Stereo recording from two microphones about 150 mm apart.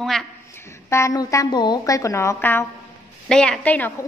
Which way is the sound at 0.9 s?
20° left (ahead or behind).